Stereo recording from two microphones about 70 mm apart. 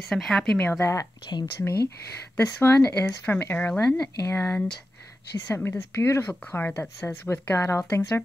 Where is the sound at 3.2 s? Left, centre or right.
Left.